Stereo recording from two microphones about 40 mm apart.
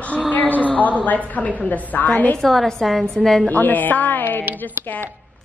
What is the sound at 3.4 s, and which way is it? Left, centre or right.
Music, left.